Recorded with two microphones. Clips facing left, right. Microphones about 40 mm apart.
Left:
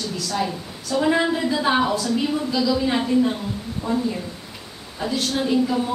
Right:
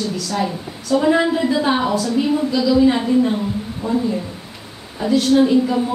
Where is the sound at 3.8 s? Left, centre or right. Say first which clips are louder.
Right 4 dB; right.